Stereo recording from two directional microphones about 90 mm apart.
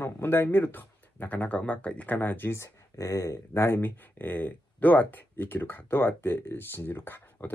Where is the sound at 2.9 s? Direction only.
35° left (ahead or behind).